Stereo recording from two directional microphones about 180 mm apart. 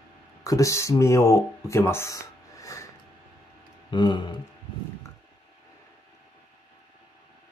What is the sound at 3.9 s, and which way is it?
Speech, 25° left (ahead or behind).